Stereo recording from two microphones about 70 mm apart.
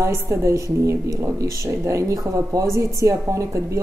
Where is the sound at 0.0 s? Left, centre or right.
Right.